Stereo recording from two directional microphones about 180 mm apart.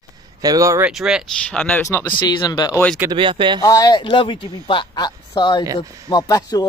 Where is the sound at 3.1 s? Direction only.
25° right (ahead or behind).